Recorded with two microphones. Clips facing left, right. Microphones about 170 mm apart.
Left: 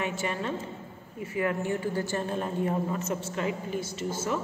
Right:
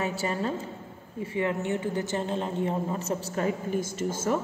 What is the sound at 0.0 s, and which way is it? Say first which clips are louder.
A woman's voice: right 2 dB; 35° right (ahead or behind).